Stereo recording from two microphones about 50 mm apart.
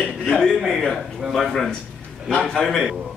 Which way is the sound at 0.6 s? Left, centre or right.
Centre.